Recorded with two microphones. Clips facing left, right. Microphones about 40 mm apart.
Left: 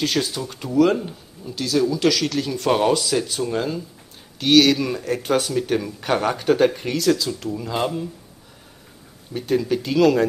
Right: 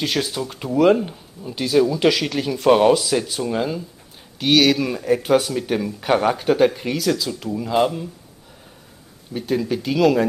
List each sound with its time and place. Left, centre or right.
0.0 s speech: centre
9.3 s speech: centre